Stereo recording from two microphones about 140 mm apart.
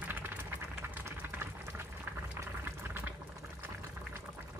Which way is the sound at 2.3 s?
15° right (ahead or behind).